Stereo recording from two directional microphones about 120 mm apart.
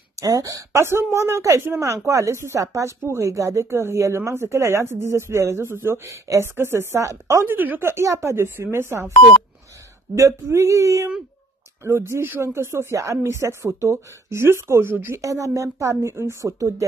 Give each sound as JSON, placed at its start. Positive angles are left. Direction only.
{"t": 0.2, "sound": "speech", "side_deg": -30}
{"t": 10.1, "sound": "speech", "side_deg": -25}